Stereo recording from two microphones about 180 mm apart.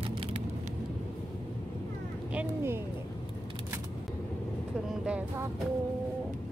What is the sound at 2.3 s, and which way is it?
Speech, 15° right (ahead or behind).